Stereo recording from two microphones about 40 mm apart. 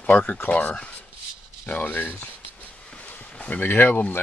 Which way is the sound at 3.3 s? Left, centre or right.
Left.